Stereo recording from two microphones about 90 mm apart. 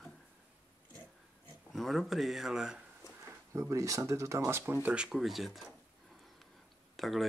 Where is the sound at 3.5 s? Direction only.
35° right (ahead or behind).